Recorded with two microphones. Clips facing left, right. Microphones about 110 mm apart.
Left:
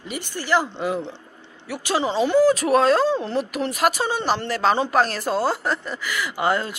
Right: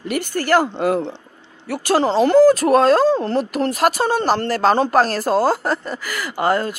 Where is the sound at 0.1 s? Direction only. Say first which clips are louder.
Right 5 dB; 50° right (ahead or behind).